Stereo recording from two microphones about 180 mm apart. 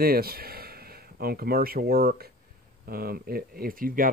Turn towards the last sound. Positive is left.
turn(degrees=-50)  # may be behind; listen again after turning